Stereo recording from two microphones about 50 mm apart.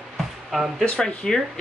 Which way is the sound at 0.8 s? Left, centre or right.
Centre.